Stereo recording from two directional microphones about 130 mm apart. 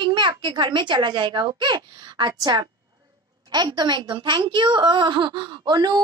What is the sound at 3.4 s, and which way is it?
Child singing, 30° right (ahead or behind).